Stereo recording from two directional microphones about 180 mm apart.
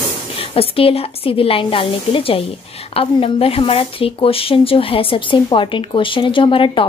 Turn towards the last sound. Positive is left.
turn(degrees=30)  # may be behind; listen again after turning